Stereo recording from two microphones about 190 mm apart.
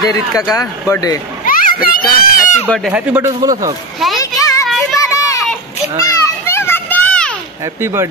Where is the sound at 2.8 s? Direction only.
5° right (ahead or behind).